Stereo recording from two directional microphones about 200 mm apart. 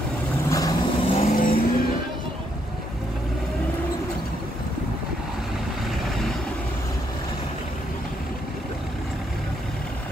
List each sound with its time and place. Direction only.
0.5 s vehicle: 20° left (ahead or behind)
1.1 s vehicle: 40° left (ahead or behind)